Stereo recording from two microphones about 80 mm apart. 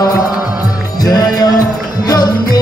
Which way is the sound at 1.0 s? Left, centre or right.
Left.